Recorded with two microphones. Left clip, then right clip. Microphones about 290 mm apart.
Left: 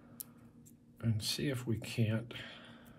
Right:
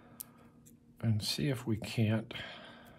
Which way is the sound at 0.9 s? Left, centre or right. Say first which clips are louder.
Right 2 dB; centre.